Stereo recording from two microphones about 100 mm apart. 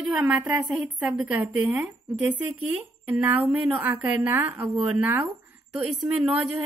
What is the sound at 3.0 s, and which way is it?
Speech, 15° right (ahead or behind).